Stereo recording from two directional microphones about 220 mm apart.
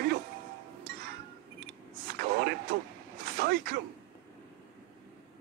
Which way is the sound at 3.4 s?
45° right (ahead or behind).